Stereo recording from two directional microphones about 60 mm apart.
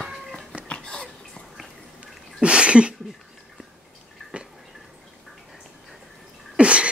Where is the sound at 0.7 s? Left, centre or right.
Centre.